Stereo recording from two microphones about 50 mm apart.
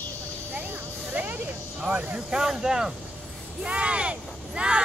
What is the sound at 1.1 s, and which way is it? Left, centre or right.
Vehicle, right.